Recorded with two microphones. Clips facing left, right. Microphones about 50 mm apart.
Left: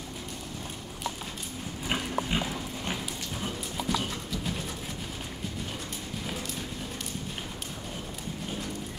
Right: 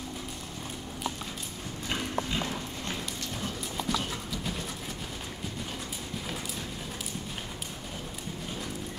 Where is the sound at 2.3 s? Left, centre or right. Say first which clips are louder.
Left 4 dB; left.